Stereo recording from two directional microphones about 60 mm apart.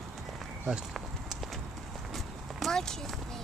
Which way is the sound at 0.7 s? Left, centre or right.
Centre.